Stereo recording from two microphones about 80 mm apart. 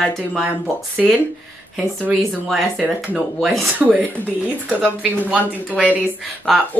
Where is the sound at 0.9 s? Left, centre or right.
Centre.